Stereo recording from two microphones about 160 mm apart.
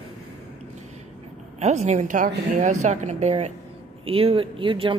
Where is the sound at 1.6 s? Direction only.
45° right (ahead or behind).